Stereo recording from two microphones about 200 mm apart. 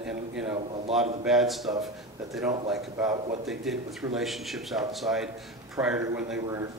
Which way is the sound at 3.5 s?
Centre (ahead or behind).